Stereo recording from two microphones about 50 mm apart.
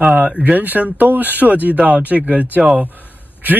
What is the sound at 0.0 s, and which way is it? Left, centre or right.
Speech, right.